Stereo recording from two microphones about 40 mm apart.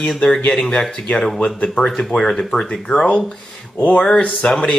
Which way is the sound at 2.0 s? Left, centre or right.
Centre.